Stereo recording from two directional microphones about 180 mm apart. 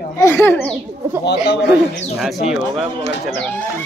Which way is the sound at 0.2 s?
10° left (ahead or behind).